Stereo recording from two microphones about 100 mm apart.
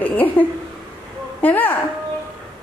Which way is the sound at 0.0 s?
15° left (ahead or behind).